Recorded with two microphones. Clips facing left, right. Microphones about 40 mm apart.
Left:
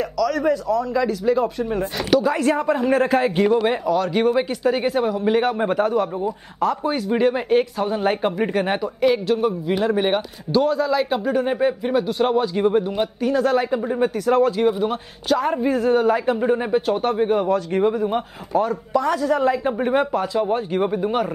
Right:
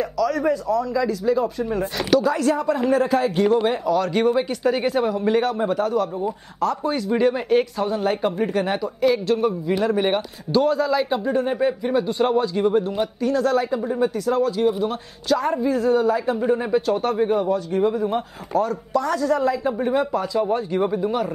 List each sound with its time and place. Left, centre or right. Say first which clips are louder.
0.0 s speech: left 1 dB; left
2.0 s speech: even; centre
2.2 s speech: left 1 dB; left
3.6 s speech: left 1 dB; centre
6.6 s speech: left 1 dB; centre
7.9 s speech: left 2 dB; left
9.3 s speech: even; centre
12.4 s speech: left 1 dB; left
14.7 s speech: left 2 dB; centre
15.6 s speech: left 1 dB; left
16.3 s speech: left 1 dB; left
17.7 s speech: even; left
18.0 s speech: left 1 dB; left